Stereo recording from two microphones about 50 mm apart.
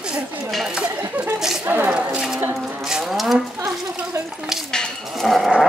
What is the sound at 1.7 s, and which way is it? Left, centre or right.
Speech, right.